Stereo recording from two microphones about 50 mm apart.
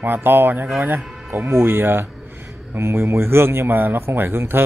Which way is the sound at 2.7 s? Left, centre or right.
Right.